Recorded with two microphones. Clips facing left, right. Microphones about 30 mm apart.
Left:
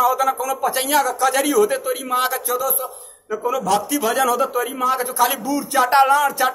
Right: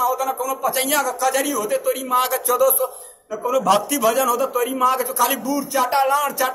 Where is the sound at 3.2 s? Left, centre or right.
Left.